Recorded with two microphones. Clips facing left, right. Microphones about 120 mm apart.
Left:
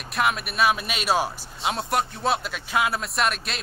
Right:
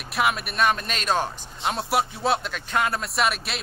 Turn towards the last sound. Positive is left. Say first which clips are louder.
# right 1 dB
turn(degrees=0)  # may be behind; listen again after turning